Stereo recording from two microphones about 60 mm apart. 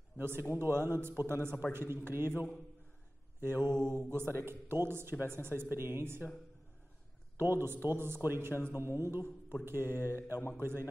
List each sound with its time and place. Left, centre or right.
0.2 s a man's voice: right
7.3 s a man's voice: right